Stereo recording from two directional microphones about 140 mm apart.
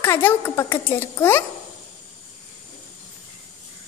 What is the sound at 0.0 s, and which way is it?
A child's voice, 15° left (ahead or behind).